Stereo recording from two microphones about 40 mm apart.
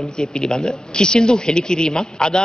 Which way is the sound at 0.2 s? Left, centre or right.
Centre.